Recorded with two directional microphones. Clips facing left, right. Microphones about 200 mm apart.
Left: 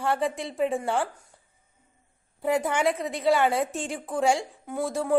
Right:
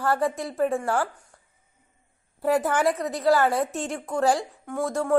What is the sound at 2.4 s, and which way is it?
A woman's voice, centre (ahead or behind).